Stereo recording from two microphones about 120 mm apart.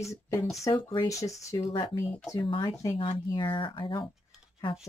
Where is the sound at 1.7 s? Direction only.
40° left (ahead or behind).